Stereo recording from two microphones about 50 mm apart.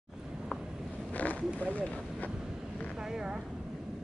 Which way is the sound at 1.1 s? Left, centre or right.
Left.